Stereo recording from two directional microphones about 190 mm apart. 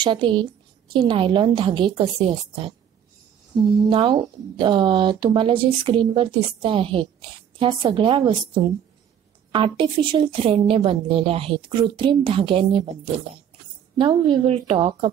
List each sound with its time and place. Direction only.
0.0 s speech: 25° right (ahead or behind)
3.9 s speech: 25° right (ahead or behind)
9.5 s speech: 30° right (ahead or behind)
13.9 s speech: 25° right (ahead or behind)